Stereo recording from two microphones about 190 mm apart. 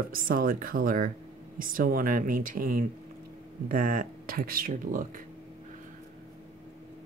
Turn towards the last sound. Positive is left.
turn(degrees=-45)  # may be behind; listen again after turning